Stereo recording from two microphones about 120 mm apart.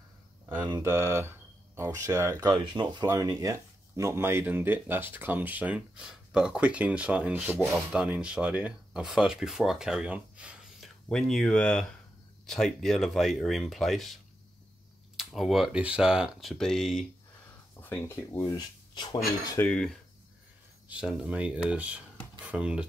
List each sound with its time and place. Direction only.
0.7 s speech: 25° right (ahead or behind)
2.5 s speech: 40° right (ahead or behind); by 10.9 s 10° right (ahead or behind)
11.1 s speech: 5° left (ahead or behind)
17.8 s speech: 15° left (ahead or behind)
19.6 s speech: 5° left (ahead or behind)
20.9 s speech: 5° right (ahead or behind)